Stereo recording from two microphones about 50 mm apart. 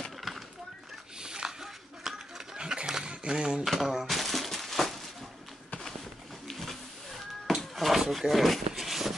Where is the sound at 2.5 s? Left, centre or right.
Centre.